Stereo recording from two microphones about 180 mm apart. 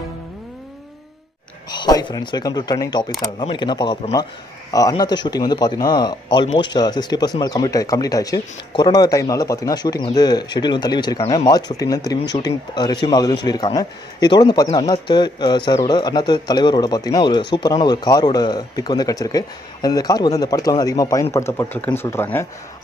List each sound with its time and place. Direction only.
1.7 s speech: 25° left (ahead or behind)